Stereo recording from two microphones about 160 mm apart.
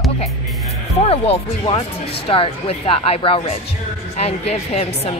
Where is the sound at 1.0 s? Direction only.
35° left (ahead or behind).